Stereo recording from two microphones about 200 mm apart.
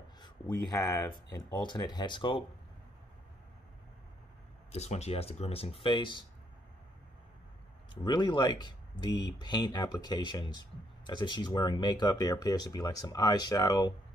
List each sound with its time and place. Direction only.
0.7 s speech: 15° left (ahead or behind)
4.7 s speech: 35° left (ahead or behind)
8.0 s speech: 20° left (ahead or behind)